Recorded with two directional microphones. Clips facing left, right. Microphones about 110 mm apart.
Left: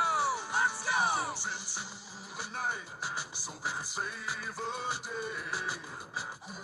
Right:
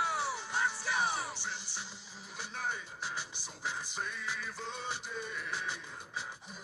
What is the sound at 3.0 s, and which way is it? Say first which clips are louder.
Music: left 3 dB; 10° left (ahead or behind).